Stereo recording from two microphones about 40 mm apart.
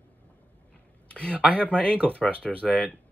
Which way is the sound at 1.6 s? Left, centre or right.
Left.